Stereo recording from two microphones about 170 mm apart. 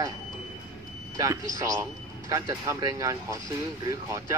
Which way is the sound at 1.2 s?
20° right (ahead or behind).